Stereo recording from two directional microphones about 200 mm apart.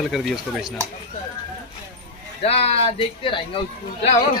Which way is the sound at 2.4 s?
30° left (ahead or behind).